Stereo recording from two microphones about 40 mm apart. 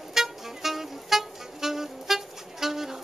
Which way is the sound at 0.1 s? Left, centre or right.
Centre.